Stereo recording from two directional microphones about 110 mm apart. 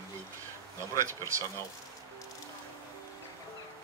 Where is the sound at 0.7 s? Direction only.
25° right (ahead or behind).